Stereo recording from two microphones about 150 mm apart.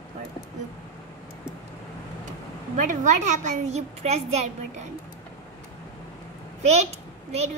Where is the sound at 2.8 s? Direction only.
55° right (ahead or behind).